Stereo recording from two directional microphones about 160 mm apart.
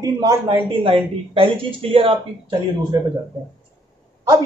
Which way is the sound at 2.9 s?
20° right (ahead or behind).